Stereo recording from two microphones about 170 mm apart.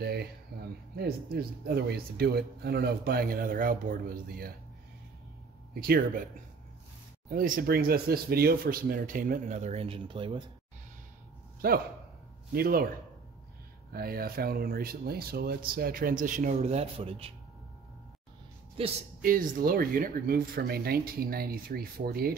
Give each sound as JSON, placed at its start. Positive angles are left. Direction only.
{"t": 0.0, "sound": "speech", "side_deg": -65}
{"t": 5.8, "sound": "speech", "side_deg": -60}
{"t": 7.2, "sound": "speech", "side_deg": -55}
{"t": 11.6, "sound": "speech", "side_deg": -60}
{"t": 13.9, "sound": "speech", "side_deg": -60}
{"t": 18.8, "sound": "speech", "side_deg": -35}
{"t": 19.2, "sound": "speech", "side_deg": -55}